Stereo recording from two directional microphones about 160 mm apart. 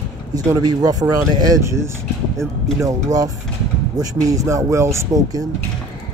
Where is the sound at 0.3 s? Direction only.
25° right (ahead or behind).